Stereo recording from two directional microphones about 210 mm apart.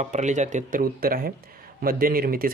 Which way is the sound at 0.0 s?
35° right (ahead or behind).